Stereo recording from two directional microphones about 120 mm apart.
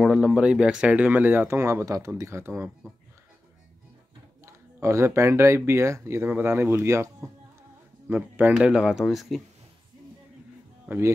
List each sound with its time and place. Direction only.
0.0 s speech: 5° right (ahead or behind)
4.5 s speech: 25° right (ahead or behind)
8.1 s speech: 15° right (ahead or behind)